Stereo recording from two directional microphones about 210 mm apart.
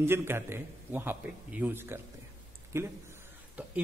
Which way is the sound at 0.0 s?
10° right (ahead or behind).